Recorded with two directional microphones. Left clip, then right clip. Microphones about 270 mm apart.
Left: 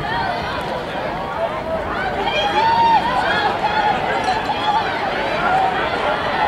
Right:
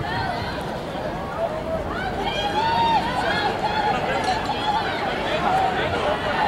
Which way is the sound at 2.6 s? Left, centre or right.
Centre.